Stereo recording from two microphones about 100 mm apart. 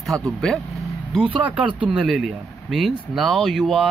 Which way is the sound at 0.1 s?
35° right (ahead or behind).